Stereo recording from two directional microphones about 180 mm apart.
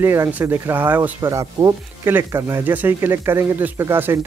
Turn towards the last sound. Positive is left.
turn(degrees=-15)  # may be behind; listen again after turning